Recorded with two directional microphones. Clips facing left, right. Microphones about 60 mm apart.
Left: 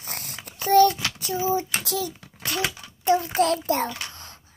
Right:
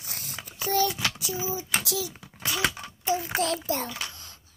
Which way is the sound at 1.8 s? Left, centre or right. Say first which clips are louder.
Left 4 dB; left.